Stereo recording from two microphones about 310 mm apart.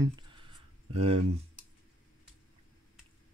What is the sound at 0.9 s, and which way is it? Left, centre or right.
Speech, centre.